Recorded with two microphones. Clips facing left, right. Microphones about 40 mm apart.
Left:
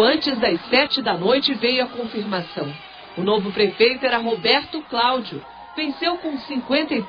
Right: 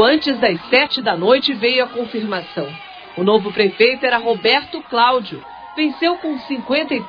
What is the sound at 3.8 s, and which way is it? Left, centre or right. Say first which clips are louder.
A man's voice: right 4 dB; centre.